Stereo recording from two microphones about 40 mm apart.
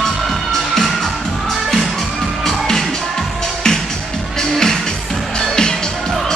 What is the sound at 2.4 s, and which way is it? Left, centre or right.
Music, centre.